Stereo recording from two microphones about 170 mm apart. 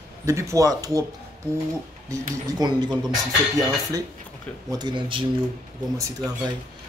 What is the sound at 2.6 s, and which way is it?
Speech, 25° right (ahead or behind).